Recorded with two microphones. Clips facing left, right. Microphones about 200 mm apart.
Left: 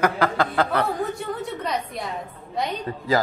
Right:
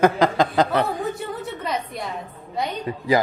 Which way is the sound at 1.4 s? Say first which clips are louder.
Even; centre (ahead or behind).